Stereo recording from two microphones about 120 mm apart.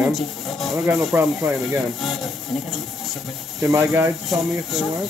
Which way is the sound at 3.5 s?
25° right (ahead or behind).